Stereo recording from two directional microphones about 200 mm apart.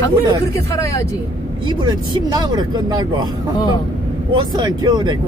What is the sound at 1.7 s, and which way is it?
Speech, 20° right (ahead or behind).